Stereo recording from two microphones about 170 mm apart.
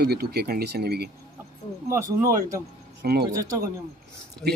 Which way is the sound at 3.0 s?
70° right (ahead or behind).